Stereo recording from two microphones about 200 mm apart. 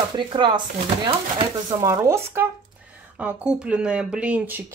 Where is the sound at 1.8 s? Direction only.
15° right (ahead or behind).